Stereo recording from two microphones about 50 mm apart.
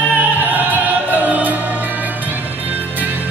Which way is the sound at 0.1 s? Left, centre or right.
Right.